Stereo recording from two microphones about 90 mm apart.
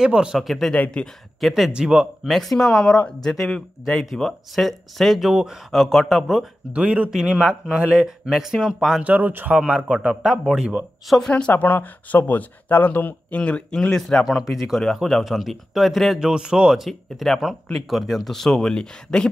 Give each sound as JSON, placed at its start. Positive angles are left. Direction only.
{"t": 0.0, "sound": "speech", "side_deg": -10}
{"t": 0.7, "sound": "speech", "side_deg": 15}
{"t": 1.4, "sound": "speech", "side_deg": 0}
{"t": 2.3, "sound": "speech", "side_deg": 5}
{"t": 6.7, "sound": "speech", "side_deg": -15}
{"t": 9.0, "sound": "speech", "side_deg": -20}
{"t": 11.1, "sound": "speech", "side_deg": 5}
{"t": 11.5, "sound": "speech", "side_deg": 20}